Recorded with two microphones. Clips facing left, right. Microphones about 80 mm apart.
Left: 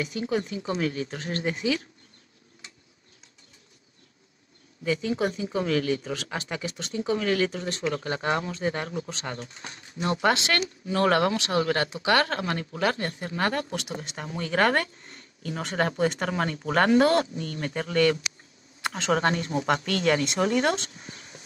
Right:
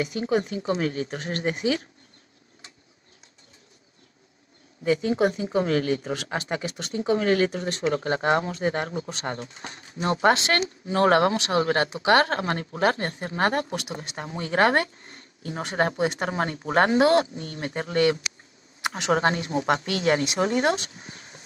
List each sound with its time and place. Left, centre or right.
0.3 s speech: right
4.8 s speech: right
7.0 s speech: right
13.7 s speech: right
14.1 s speech: right
18.8 s a sound: centre
19.5 s speech: right
21.1 s a sound: right